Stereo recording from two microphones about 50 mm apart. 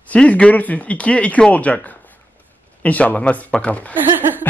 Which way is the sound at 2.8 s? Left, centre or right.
Left.